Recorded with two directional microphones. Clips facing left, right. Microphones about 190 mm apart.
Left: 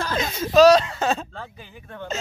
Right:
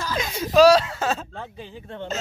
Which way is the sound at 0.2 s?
10° right (ahead or behind).